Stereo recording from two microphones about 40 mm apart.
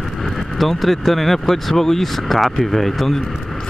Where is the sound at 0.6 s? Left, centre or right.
Centre.